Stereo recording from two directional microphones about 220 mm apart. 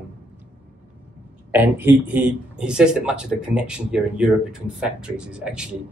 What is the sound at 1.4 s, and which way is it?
Speech, 10° right (ahead or behind).